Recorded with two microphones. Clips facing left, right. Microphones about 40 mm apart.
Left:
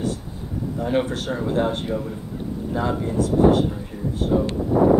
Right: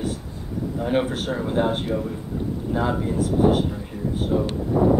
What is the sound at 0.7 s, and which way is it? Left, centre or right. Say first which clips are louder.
Speech: even; centre.